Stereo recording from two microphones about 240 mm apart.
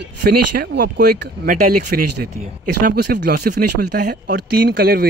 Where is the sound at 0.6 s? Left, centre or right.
Right.